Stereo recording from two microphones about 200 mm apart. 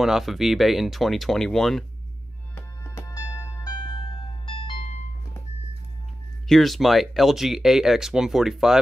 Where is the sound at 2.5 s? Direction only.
15° left (ahead or behind).